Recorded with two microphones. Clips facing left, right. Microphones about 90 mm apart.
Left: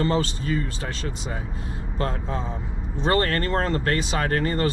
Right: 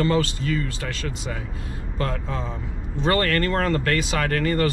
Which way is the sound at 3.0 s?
25° left (ahead or behind).